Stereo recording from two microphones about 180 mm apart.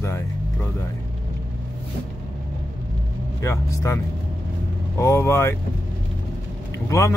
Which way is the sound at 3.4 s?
15° left (ahead or behind).